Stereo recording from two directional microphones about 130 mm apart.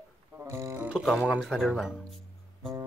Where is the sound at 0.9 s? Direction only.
Centre (ahead or behind).